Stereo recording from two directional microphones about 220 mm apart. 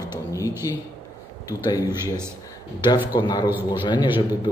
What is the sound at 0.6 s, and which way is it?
Speech, 15° left (ahead or behind).